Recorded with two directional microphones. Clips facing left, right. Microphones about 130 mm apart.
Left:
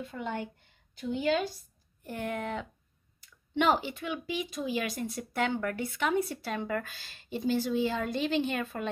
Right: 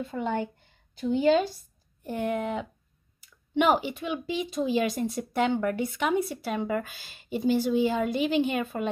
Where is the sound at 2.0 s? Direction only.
20° right (ahead or behind).